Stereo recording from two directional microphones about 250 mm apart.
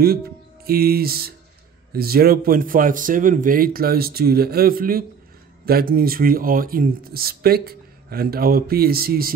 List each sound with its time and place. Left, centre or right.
0.7 s speech: right